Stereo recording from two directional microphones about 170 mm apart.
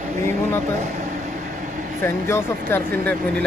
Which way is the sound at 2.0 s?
15° left (ahead or behind).